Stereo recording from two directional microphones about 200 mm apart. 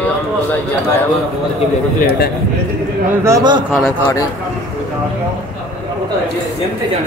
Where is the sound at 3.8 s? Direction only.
10° left (ahead or behind).